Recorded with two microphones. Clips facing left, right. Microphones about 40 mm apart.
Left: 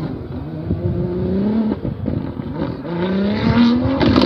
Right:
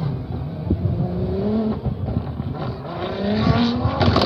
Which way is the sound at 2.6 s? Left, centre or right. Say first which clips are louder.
Left 8 dB; centre.